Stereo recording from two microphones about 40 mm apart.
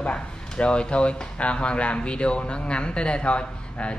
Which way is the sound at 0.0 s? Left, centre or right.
Left.